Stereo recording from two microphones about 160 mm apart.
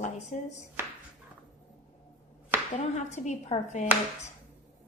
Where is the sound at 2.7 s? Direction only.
50° left (ahead or behind).